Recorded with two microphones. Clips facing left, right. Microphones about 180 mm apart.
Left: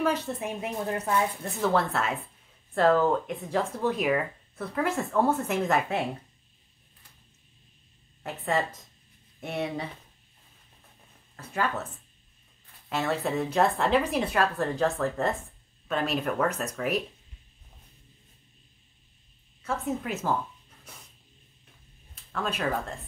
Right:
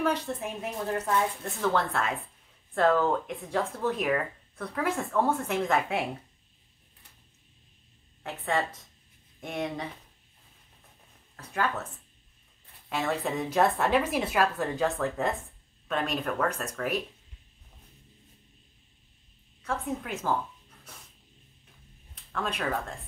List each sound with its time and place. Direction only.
0.0 s speech: 5° left (ahead or behind)
9.4 s speech: 10° left (ahead or behind)
11.3 s speech: 5° left (ahead or behind)
13.0 s speech: centre (ahead or behind)
19.6 s speech: 5° left (ahead or behind)
22.1 s speech: 5° left (ahead or behind)